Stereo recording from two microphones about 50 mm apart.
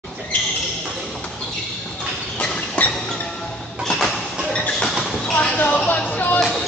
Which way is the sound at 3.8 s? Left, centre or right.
Centre.